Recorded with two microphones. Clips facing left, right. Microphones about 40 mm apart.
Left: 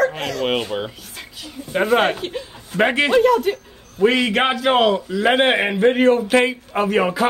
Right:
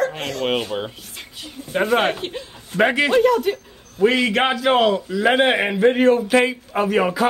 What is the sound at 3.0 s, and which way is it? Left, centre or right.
A man's voice, centre.